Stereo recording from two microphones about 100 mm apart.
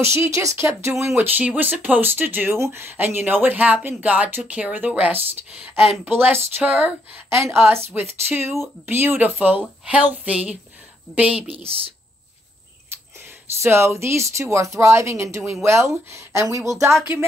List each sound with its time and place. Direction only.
0.0 s speech: 25° right (ahead or behind)
11.6 s speech: 70° right (ahead or behind)
13.6 s speech: 25° right (ahead or behind)